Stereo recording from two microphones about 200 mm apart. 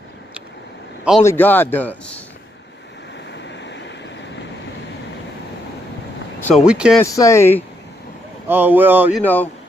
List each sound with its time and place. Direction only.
1.2 s speech: 10° left (ahead or behind)
3.3 s vehicle: 60° left (ahead or behind)
6.4 s speech: centre (ahead or behind)
7.0 s speech: 15° left (ahead or behind)
8.5 s speech: 10° right (ahead or behind)
9.2 s speech: 10° left (ahead or behind)